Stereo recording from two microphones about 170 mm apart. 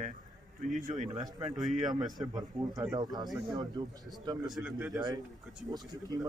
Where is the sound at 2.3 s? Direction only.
20° right (ahead or behind).